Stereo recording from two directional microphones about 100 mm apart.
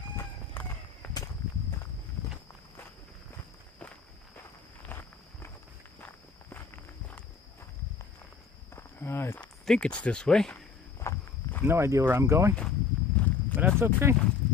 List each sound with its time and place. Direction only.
0.1 s horse: 25° left (ahead or behind)
5.9 s walk: 20° left (ahead or behind)
8.7 s walk: 25° left (ahead or behind)
9.4 s speech: 10° left (ahead or behind)
11.0 s walk: 25° left (ahead or behind)
11.6 s speech: 25° right (ahead or behind)
12.5 s walk: 10° left (ahead or behind)
13.7 s speech: 20° right (ahead or behind)